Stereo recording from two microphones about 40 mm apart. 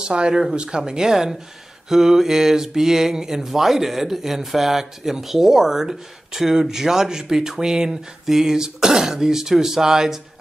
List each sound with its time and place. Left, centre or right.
0.0 s speech: right
0.3 s speech: centre
0.6 s speech: right